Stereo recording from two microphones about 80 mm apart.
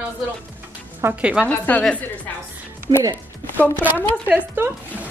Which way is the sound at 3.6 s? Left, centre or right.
Left.